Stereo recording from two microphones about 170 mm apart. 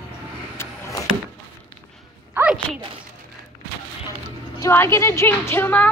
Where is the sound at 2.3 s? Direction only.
10° right (ahead or behind).